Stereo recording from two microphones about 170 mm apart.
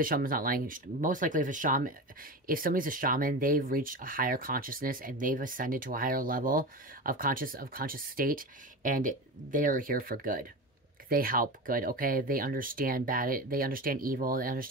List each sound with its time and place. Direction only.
0.0 s speech: 55° right (ahead or behind)